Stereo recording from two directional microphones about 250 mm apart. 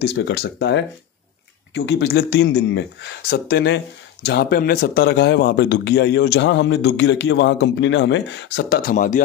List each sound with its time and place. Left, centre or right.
0.0 s speech: left